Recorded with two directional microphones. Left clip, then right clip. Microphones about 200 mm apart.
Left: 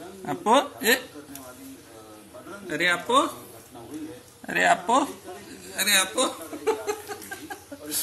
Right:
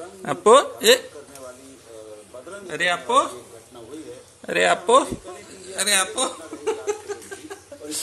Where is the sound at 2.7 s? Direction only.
20° right (ahead or behind).